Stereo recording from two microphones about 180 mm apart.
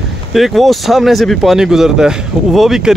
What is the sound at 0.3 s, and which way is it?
Speech, centre (ahead or behind).